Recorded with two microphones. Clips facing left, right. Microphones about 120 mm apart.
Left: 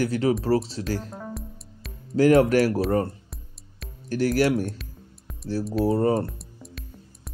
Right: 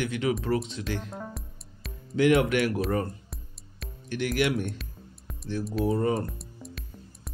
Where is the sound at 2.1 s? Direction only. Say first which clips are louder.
Left 5 dB; 40° left (ahead or behind).